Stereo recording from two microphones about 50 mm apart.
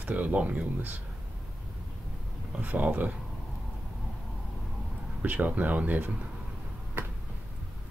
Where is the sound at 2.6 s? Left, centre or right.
Right.